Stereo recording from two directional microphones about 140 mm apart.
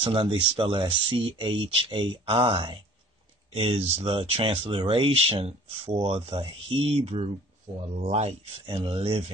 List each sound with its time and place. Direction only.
0.0 s speech: 35° right (ahead or behind)
8.6 s speech: 35° right (ahead or behind)